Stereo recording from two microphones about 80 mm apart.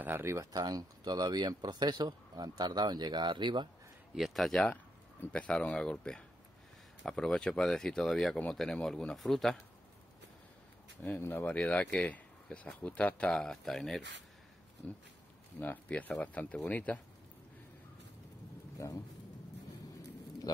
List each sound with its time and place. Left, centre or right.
0.0 s speech: right
0.6 s speech: right
4.1 s speech: centre
5.3 s speech: centre
11.1 s speech: left
11.4 s speech: centre
15.6 s speech: left
18.8 s speech: left
20.5 s speech: left